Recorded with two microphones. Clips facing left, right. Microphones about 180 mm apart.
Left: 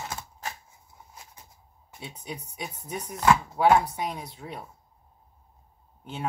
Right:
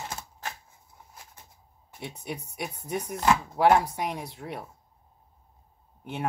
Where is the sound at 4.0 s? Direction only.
70° right (ahead or behind).